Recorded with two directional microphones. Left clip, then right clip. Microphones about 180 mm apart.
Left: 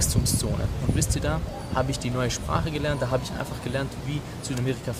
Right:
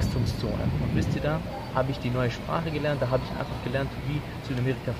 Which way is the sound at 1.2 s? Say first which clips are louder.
Even; 20° left (ahead or behind).